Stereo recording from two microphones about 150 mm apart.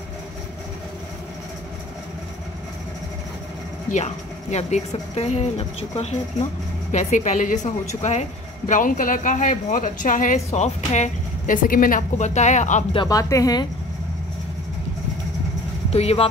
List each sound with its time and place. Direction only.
3.9 s speech: 50° left (ahead or behind)
12.9 s speech: 30° left (ahead or behind)
15.9 s speech: 45° left (ahead or behind)